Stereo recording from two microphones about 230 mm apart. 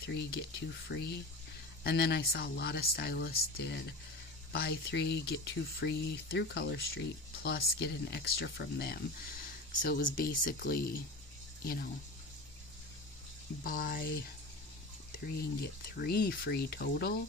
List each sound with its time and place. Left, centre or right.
0.0 s speech: left
13.7 s speech: left
16.0 s speech: left